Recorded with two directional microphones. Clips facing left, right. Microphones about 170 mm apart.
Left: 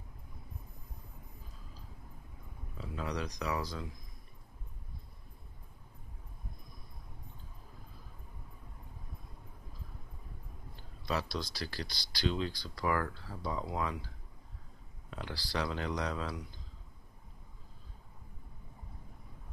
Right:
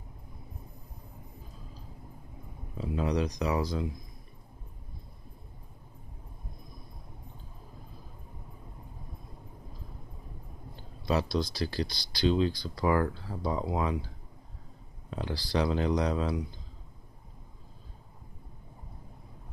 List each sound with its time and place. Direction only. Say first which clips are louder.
2.8 s speech: right 9 dB; 20° right (ahead or behind)
11.1 s speech: right 7 dB; 20° right (ahead or behind)
15.0 s speech: right 7 dB; 25° right (ahead or behind)